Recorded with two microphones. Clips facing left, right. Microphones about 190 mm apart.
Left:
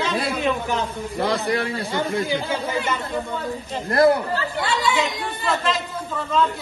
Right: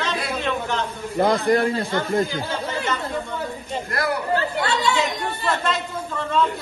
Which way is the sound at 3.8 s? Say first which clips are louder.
Left 11 dB; 30° left (ahead or behind).